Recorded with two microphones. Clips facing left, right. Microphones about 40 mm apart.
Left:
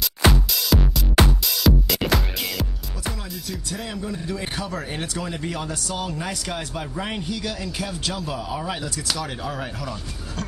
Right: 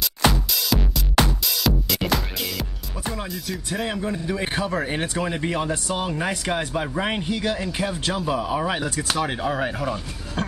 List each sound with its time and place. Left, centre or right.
0.5 s music: centre
3.7 s speech: right